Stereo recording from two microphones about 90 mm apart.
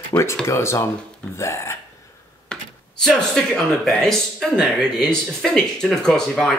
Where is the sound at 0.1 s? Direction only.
25° left (ahead or behind).